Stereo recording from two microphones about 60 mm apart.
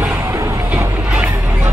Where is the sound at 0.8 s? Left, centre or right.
Right.